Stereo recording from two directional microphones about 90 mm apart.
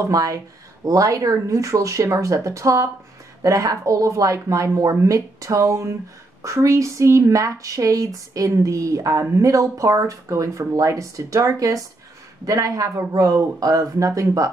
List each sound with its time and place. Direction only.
0.0 s speech: 40° right (ahead or behind)